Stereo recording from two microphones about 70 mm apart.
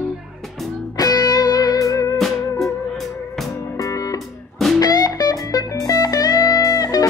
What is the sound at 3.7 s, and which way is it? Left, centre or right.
Music, left.